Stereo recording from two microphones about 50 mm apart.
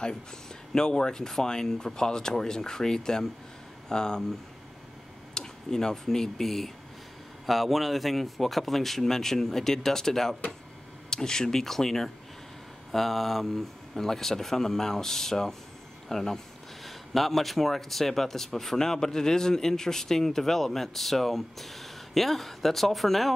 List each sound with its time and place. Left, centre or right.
0.7 s speech: centre
5.3 s a man's voice: centre